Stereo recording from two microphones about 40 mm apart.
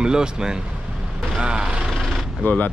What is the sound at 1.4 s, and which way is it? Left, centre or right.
Vehicle, right.